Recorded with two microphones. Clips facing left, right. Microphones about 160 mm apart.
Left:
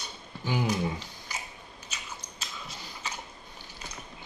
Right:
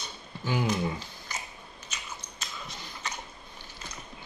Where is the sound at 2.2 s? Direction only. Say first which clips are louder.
Right 1 dB; 10° left (ahead or behind).